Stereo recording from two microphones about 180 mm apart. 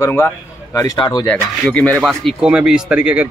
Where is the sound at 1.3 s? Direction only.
10° left (ahead or behind).